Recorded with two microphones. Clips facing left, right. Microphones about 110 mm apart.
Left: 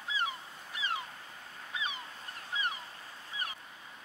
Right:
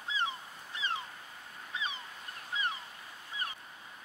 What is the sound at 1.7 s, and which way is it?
Goose, 30° right (ahead or behind).